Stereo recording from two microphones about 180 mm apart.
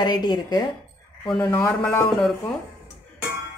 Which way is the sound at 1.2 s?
5° left (ahead or behind).